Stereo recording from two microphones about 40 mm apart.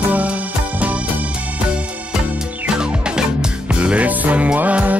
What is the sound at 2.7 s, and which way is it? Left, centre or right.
Music, centre.